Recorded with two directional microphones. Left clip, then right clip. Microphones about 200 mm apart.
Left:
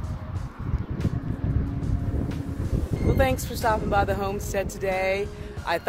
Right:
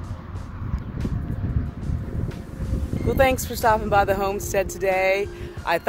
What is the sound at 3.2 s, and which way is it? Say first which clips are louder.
Speech: right 6 dB; 35° right (ahead or behind).